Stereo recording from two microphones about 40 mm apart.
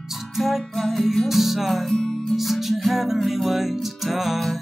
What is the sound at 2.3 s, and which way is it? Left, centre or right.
Music, centre.